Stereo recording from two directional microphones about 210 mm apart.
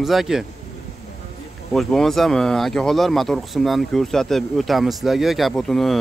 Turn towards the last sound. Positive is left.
turn(degrees=0)  # may be behind; listen again after turning